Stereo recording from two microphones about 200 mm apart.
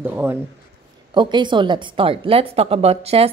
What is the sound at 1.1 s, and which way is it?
A woman's voice, 25° right (ahead or behind).